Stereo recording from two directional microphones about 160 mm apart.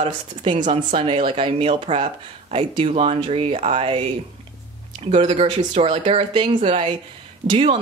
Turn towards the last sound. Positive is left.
turn(degrees=-35)  # may be behind; listen again after turning